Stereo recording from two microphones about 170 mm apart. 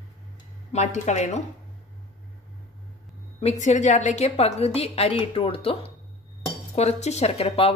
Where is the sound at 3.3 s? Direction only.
40° left (ahead or behind).